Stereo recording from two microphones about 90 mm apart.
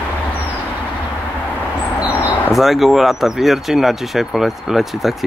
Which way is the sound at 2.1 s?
15° right (ahead or behind).